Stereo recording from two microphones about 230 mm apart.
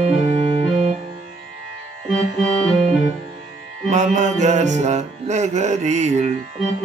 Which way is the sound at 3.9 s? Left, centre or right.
Right.